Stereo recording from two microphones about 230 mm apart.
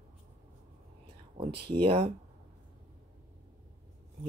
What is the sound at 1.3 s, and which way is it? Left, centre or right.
Speech, right.